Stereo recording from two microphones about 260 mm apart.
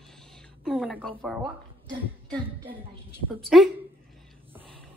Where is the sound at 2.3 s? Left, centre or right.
Centre.